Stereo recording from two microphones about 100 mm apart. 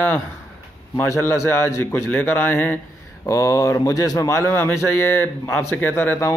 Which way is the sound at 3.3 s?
35° left (ahead or behind).